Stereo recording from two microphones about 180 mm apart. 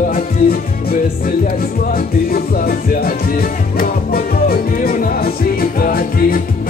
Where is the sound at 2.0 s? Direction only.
55° left (ahead or behind).